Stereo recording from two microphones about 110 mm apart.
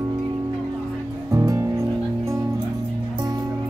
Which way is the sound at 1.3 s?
30° right (ahead or behind).